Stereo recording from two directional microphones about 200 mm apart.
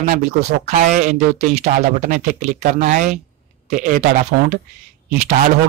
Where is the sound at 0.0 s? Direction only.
40° right (ahead or behind).